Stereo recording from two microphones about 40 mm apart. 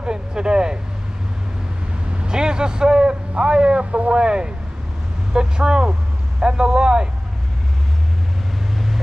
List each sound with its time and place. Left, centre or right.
0.0 s a sound: right
2.1 s a man's voice: right
8.7 s vehicle: centre